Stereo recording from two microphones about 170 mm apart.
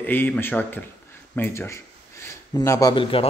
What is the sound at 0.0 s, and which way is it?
Speech, 10° left (ahead or behind).